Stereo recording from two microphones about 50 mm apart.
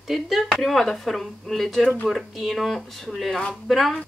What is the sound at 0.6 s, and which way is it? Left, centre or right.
Speech, centre.